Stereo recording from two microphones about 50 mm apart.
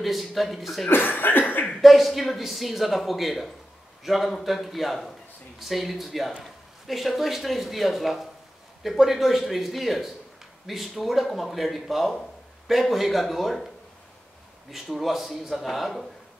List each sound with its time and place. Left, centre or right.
0.0 s speech: centre
0.8 s cough: left
1.8 s speech: centre
14.7 s speech: centre